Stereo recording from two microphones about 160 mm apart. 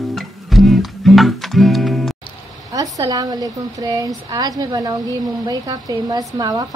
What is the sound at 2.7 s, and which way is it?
Speech, 20° right (ahead or behind).